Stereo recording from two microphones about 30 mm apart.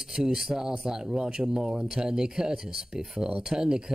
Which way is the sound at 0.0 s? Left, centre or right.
Centre.